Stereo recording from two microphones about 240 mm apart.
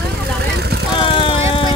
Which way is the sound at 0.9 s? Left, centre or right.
Left.